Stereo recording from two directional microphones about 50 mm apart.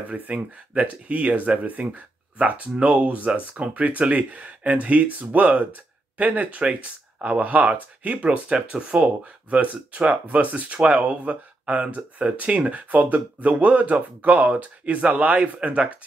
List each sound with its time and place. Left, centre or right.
0.1 s speech: right